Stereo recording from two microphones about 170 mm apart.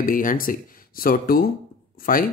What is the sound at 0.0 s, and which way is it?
Speech, 55° left (ahead or behind).